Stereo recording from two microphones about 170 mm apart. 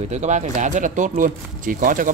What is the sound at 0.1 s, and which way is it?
Speech, 45° right (ahead or behind).